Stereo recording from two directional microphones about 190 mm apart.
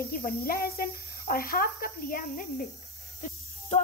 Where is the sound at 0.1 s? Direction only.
50° left (ahead or behind).